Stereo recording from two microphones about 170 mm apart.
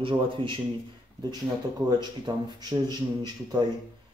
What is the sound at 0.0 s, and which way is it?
Speech, 30° right (ahead or behind).